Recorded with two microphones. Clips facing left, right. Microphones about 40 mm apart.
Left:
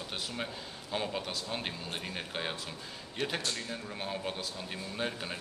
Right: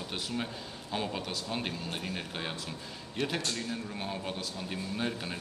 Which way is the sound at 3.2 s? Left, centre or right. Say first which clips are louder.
Right 2 dB; centre.